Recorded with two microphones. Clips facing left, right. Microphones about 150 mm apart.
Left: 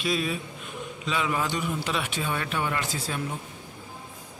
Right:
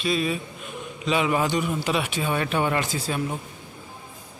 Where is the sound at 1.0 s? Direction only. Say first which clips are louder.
Right 5 dB; 20° right (ahead or behind).